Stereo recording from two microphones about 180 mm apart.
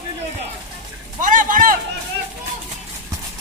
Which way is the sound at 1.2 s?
50° right (ahead or behind).